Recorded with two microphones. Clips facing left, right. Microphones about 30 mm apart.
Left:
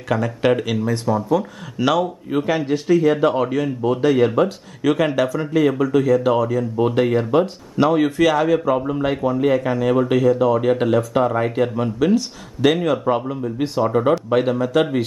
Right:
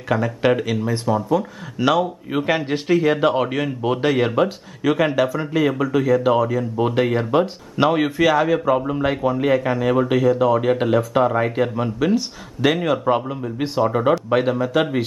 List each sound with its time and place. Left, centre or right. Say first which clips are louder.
0.1 s speech: even; centre
2.4 s speech: even; right
4.3 s speech: left 1 dB; centre
8.2 s speech: left 1 dB; centre